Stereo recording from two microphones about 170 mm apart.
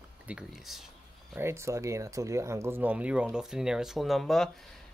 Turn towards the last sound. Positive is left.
turn(degrees=0)  # may be behind; listen again after turning